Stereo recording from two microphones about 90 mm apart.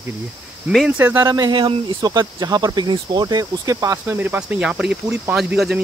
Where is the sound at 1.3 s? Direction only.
55° right (ahead or behind); by 4.0 s 40° right (ahead or behind).